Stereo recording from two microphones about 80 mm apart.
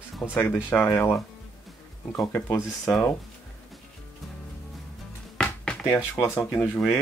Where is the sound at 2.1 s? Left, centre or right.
Left.